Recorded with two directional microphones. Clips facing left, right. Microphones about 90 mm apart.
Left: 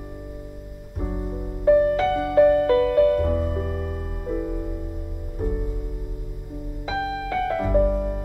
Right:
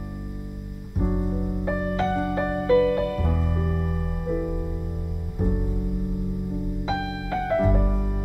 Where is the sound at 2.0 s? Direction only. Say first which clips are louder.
Left 2 dB; 30° right (ahead or behind).